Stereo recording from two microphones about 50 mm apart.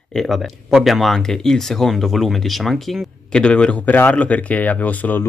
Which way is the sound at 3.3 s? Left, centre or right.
Centre.